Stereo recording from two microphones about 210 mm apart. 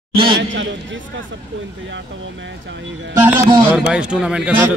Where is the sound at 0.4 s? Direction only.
60° right (ahead or behind).